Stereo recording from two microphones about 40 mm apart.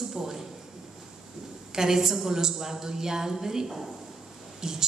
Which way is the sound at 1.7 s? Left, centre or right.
Centre.